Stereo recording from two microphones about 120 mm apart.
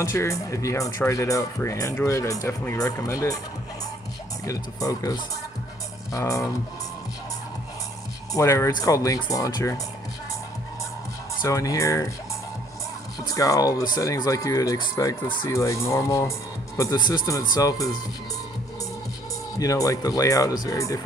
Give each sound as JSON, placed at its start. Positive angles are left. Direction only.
{"t": 0.0, "sound": "speech", "side_deg": 25}
{"t": 4.5, "sound": "speech", "side_deg": 30}
{"t": 6.1, "sound": "speech", "side_deg": 25}
{"t": 8.3, "sound": "speech", "side_deg": 25}
{"t": 11.4, "sound": "speech", "side_deg": 30}
{"t": 13.3, "sound": "speech", "side_deg": 30}
{"t": 19.6, "sound": "speech", "side_deg": 30}